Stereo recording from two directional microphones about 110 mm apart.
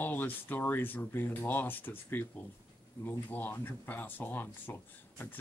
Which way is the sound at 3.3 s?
15° left (ahead or behind).